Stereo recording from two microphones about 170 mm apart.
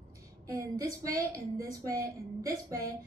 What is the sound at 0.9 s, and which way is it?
A woman's voice, 20° right (ahead or behind).